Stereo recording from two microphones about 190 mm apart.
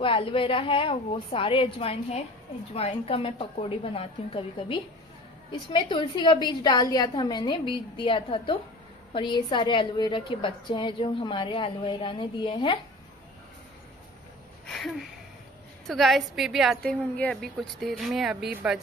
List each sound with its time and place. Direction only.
0.0 s a woman's voice: 30° left (ahead or behind)
14.7 s a sound: centre (ahead or behind)
15.9 s a woman's voice: centre (ahead or behind)